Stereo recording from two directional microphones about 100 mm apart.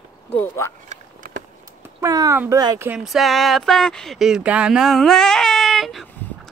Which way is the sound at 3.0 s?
Centre (ahead or behind).